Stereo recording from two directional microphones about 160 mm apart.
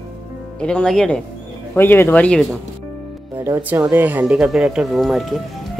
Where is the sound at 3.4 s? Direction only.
15° right (ahead or behind).